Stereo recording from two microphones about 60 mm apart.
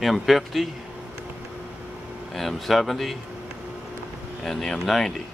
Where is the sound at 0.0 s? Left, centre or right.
Centre.